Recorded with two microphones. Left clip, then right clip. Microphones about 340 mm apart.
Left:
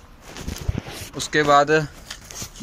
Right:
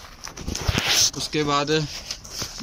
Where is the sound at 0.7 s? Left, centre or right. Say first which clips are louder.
Right 14 dB; right.